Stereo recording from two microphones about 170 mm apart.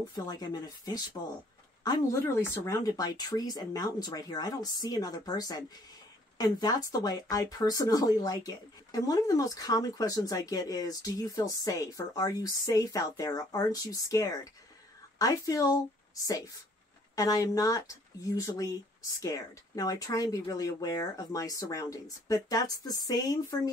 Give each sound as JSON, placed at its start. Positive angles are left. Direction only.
{"t": 0.1, "sound": "speech", "side_deg": 25}